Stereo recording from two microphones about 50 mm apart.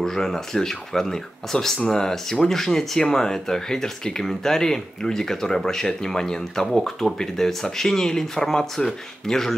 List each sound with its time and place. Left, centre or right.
0.0 s speech: centre